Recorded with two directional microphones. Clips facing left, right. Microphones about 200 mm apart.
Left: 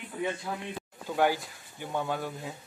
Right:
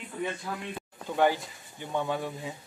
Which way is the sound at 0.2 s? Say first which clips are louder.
Left 1 dB; 10° left (ahead or behind).